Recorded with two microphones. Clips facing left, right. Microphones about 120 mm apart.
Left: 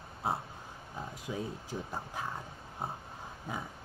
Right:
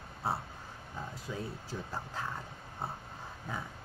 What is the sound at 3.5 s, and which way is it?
Speech, 15° left (ahead or behind).